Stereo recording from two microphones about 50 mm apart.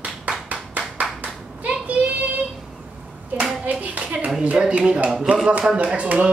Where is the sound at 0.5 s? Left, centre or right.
Right.